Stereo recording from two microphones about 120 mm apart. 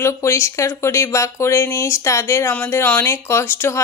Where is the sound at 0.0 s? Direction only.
25° left (ahead or behind).